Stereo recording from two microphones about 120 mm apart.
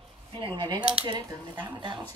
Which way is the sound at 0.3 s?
40° right (ahead or behind).